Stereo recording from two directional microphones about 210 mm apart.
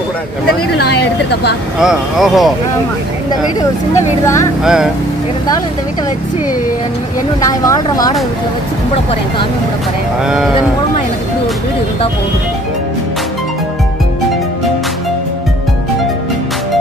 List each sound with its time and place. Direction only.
0.7 s speech: 50° left (ahead or behind)
1.8 s speech: centre (ahead or behind)
3.9 s speech: 15° left (ahead or behind)
4.6 s speech: 5° right (ahead or behind)
7.4 s speech: 15° left (ahead or behind)
10.2 s speech: centre (ahead or behind)